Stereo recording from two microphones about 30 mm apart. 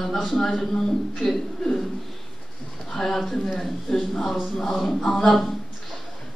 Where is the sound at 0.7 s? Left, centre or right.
Centre.